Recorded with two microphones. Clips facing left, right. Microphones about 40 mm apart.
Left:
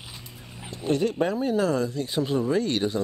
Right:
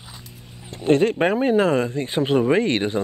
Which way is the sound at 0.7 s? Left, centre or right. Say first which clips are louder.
Right 7 dB; right.